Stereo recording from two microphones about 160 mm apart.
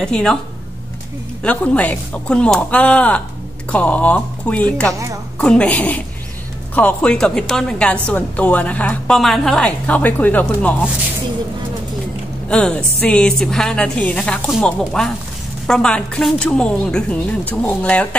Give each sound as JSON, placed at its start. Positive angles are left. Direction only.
{"t": 0.0, "sound": "a woman's voice", "side_deg": 5}
{"t": 1.4, "sound": "a woman's voice", "side_deg": 10}
{"t": 4.9, "sound": "a woman's voice", "side_deg": -20}
{"t": 5.4, "sound": "a woman's voice", "side_deg": 5}
{"t": 12.4, "sound": "a woman's voice", "side_deg": 5}